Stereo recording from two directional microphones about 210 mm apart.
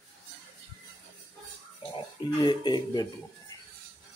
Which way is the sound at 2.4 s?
20° left (ahead or behind).